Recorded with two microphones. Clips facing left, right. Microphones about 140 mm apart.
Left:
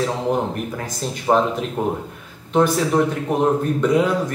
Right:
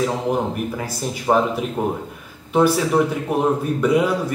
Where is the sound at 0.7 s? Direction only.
5° right (ahead or behind).